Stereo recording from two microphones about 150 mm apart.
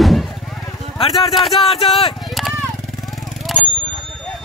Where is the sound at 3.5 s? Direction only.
Centre (ahead or behind).